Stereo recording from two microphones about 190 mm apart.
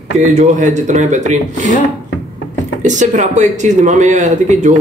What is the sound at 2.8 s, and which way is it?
Speech, 40° right (ahead or behind).